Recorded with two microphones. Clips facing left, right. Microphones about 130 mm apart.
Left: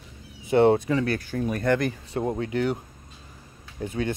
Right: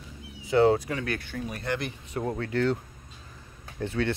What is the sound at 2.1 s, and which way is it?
Speech, 20° left (ahead or behind).